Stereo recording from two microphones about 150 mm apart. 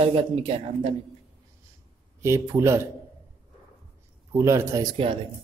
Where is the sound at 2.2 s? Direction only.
20° right (ahead or behind).